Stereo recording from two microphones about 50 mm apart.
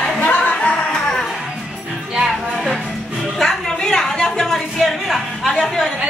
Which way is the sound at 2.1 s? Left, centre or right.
Centre.